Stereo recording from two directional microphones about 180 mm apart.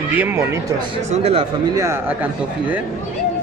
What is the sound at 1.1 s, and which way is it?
Speech, 35° right (ahead or behind).